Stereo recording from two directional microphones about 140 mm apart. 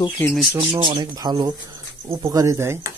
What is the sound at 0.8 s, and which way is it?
Speech, 35° right (ahead or behind).